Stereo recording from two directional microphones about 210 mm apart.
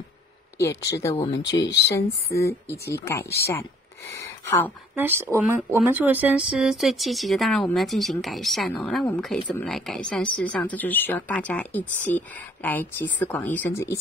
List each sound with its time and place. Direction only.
0.6 s speech: 15° left (ahead or behind)
1.6 s speech: 55° left (ahead or behind)
2.0 s a woman's voice: 15° left (ahead or behind)
4.9 s a woman's voice: 10° right (ahead or behind); by 13.9 s 10° left (ahead or behind)